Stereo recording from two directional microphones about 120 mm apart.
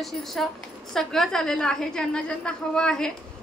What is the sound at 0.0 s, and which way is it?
A woman's voice, centre (ahead or behind).